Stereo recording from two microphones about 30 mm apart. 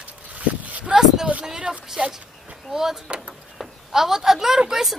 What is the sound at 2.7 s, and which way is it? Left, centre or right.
Speech, centre.